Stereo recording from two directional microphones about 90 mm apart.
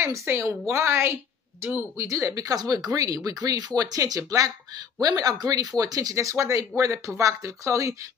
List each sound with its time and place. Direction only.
0.0 s speech: 30° right (ahead or behind)